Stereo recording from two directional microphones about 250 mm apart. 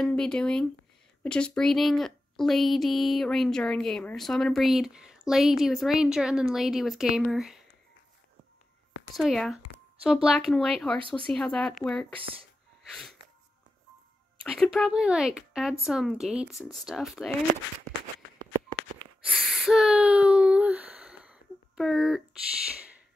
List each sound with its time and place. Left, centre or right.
0.0 s speech: centre
9.1 s speech: centre
12.8 s wheeze: centre
14.4 s speech: centre
19.2 s a sound: centre